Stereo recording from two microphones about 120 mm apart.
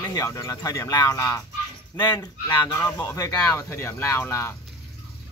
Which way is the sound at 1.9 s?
20° left (ahead or behind).